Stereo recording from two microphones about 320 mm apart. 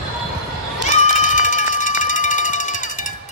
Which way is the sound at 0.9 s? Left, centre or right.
Left.